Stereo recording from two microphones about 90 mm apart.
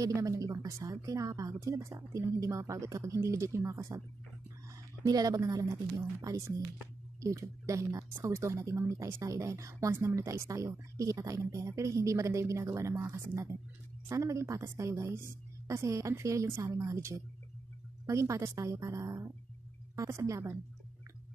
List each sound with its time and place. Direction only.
0.0 s speech: 35° right (ahead or behind)
4.6 s a sound: 45° right (ahead or behind)
5.5 s speech: 40° right (ahead or behind)